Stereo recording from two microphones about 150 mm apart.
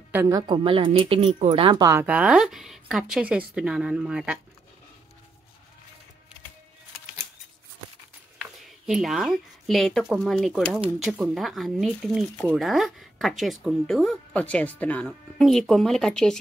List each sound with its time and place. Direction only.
0.1 s a woman's voice: 15° right (ahead or behind)
0.4 s speech: 35° right (ahead or behind); by 4.4 s 5° right (ahead or behind)
8.4 s speech: centre (ahead or behind)